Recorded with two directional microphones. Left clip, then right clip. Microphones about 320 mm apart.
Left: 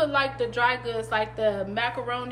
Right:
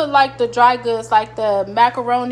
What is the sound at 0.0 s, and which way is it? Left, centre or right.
A woman's voice, centre.